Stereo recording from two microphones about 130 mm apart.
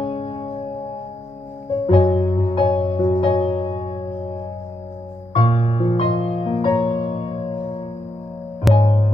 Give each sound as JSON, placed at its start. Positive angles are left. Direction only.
{"t": 0.0, "sound": "music", "side_deg": 40}
{"t": 1.9, "sound": "music", "side_deg": 40}
{"t": 5.4, "sound": "music", "side_deg": 45}